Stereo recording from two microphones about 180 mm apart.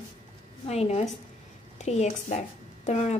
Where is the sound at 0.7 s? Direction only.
35° left (ahead or behind).